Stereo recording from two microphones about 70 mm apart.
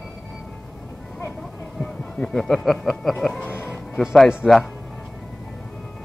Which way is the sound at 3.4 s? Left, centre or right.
Left.